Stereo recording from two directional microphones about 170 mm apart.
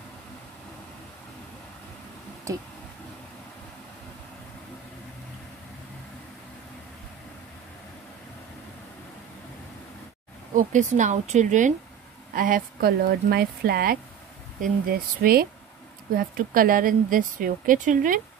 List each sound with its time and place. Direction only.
2.5 s speech: 20° right (ahead or behind)
10.5 s speech: 45° right (ahead or behind)